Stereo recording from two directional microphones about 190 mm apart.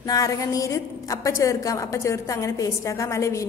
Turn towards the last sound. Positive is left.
turn(degrees=15)  # may be behind; listen again after turning